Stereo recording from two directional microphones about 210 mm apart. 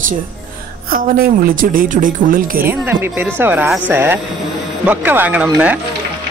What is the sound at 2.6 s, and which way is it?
Speech, 10° right (ahead or behind).